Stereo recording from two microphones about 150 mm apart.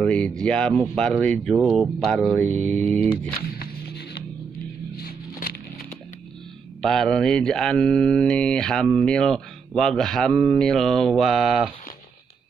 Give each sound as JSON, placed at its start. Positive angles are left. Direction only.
{"t": 0.0, "sound": "speech", "side_deg": 5}
{"t": 3.4, "sound": "music", "side_deg": 90}
{"t": 4.9, "sound": "a sound", "side_deg": 90}
{"t": 6.8, "sound": "speech", "side_deg": 5}